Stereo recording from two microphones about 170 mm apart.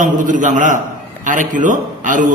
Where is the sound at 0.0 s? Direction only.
50° right (ahead or behind).